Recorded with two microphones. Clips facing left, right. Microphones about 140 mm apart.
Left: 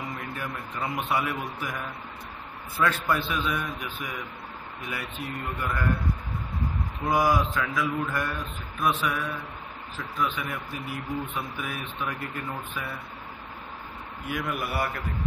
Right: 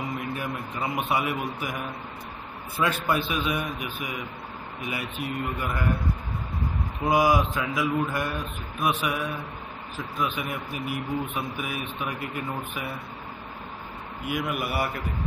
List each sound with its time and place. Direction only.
0.2 s speech: 15° right (ahead or behind)
7.1 s speech: 15° right (ahead or behind)
14.2 s speech: 10° right (ahead or behind)